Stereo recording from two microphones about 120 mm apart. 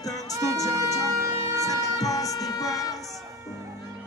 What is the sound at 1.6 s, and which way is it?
Music, 30° left (ahead or behind).